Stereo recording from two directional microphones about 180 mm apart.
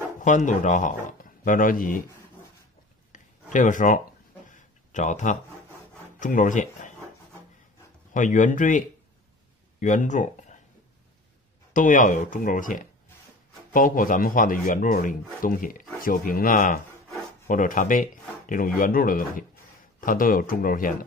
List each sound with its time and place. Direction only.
0.2 s speech: 45° left (ahead or behind)
3.5 s speech: 45° left (ahead or behind)
4.5 s a sound: 45° left (ahead or behind)
6.1 s speech: 45° left (ahead or behind)
8.1 s speech: 45° left (ahead or behind)
11.7 s speech: 45° left (ahead or behind)